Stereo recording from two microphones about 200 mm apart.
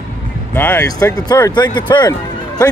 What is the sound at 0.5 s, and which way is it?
Speech, 15° left (ahead or behind).